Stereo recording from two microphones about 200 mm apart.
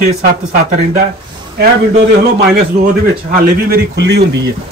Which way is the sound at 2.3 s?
45° right (ahead or behind).